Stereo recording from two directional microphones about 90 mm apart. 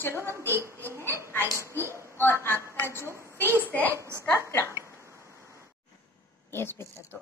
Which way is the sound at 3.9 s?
35° right (ahead or behind).